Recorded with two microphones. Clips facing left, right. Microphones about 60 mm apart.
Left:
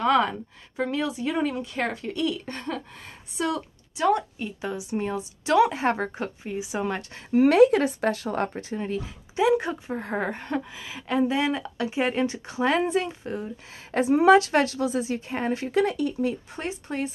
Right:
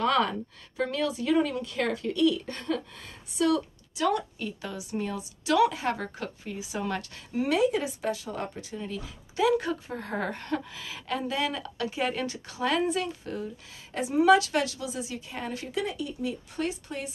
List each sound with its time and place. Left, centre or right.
0.0 s a woman's voice: centre
7.3 s speech: left
9.4 s a woman's voice: left
13.9 s a woman's voice: left
15.8 s speech: left
16.5 s a woman's voice: left